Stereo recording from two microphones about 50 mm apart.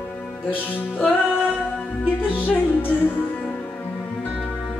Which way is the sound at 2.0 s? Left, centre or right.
Left.